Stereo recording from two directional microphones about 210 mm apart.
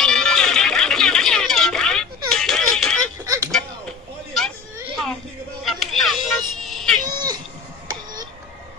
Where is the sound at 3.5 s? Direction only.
5° left (ahead or behind).